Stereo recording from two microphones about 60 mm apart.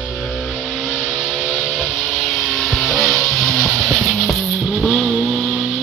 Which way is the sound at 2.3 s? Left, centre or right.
Centre.